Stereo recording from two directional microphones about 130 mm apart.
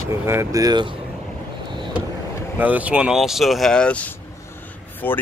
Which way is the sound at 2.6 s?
10° right (ahead or behind).